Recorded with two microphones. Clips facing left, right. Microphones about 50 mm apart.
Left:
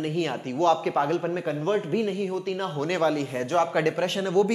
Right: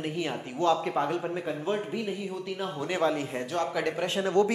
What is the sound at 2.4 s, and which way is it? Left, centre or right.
Speech, left.